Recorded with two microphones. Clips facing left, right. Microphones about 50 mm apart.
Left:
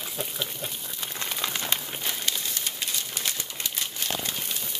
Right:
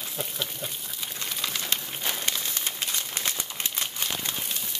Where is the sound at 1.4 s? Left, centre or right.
Centre.